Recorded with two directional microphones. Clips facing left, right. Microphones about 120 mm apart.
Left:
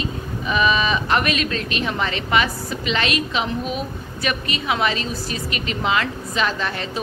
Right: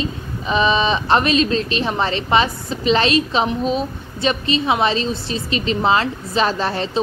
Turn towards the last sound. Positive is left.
turn(degrees=-30)  # may be behind; listen again after turning